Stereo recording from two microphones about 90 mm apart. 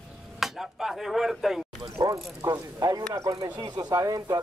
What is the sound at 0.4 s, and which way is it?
Chopping, 5° right (ahead or behind).